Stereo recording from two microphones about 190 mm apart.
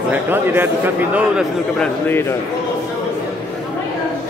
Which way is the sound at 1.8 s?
10° left (ahead or behind).